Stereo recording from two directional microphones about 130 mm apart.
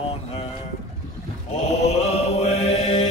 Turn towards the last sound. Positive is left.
turn(degrees=50)  # may be behind; listen again after turning